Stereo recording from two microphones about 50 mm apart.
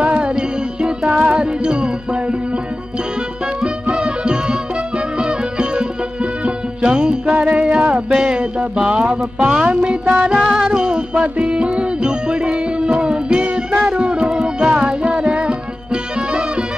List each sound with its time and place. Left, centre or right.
0.1 s music: centre
3.6 s music: centre